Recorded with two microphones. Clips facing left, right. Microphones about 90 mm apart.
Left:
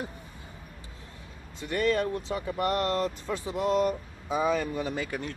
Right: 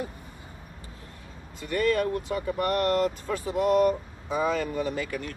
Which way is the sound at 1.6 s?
20° left (ahead or behind).